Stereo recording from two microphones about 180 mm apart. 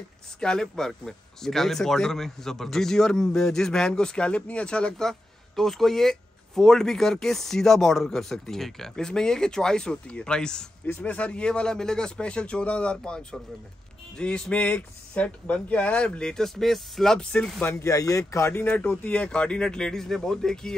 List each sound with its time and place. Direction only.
0.4 s speech: 5° left (ahead or behind)